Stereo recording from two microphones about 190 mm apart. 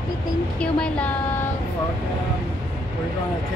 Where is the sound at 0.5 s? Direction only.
5° left (ahead or behind).